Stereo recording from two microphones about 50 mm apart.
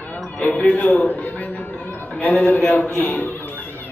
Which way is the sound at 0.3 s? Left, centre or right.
Left.